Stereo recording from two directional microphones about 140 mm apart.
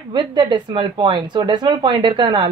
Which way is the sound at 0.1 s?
30° right (ahead or behind).